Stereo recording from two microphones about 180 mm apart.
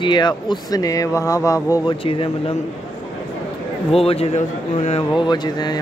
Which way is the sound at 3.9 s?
35° left (ahead or behind).